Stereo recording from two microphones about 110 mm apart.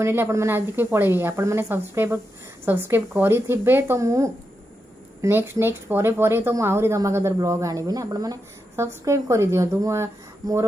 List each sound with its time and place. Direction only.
0.0 s speech: 20° right (ahead or behind)